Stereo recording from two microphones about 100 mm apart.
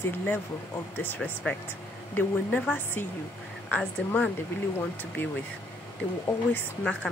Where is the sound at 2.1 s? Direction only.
15° left (ahead or behind).